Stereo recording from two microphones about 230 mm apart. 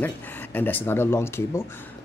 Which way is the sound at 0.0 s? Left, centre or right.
Centre.